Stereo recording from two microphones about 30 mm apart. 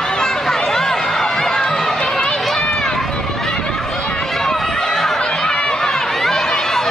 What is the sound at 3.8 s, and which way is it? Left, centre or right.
Run, centre.